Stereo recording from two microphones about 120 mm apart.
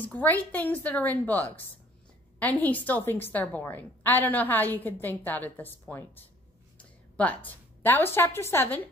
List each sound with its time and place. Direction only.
0.0 s a woman's voice: 15° left (ahead or behind)